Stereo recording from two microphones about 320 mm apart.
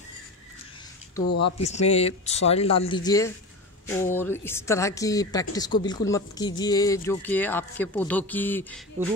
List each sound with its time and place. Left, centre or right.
1.6 s a woman's voice: left; by 8.8 s centre